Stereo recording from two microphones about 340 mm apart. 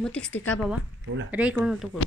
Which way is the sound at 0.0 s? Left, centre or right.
Centre.